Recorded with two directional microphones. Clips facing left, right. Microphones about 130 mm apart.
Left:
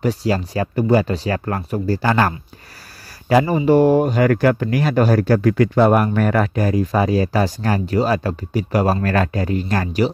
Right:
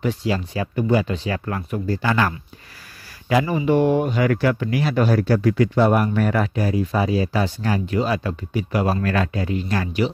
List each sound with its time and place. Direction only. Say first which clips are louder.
0.0 s speech: left 3 dB; 40° left (ahead or behind)